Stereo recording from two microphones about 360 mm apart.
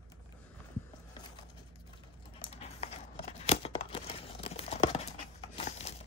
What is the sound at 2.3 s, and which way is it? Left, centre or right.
Tearing, centre.